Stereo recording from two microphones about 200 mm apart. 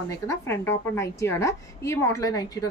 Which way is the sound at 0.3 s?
15° left (ahead or behind).